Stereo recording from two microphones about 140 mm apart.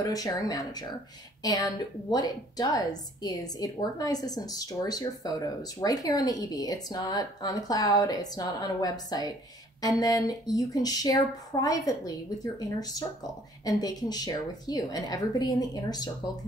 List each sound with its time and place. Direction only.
0.0 s a woman's voice: 25° left (ahead or behind)